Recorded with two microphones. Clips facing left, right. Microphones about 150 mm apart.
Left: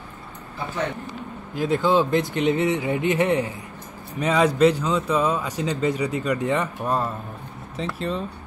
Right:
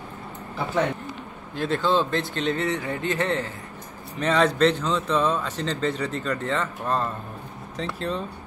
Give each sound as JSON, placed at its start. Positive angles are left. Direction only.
{"t": 1.5, "sound": "speech", "side_deg": 10}